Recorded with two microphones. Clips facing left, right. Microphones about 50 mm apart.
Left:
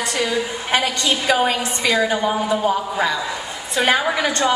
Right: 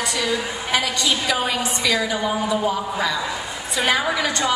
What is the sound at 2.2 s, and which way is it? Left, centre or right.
A woman's voice, left.